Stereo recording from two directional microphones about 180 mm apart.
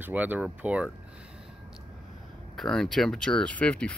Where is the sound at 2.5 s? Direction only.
Centre (ahead or behind).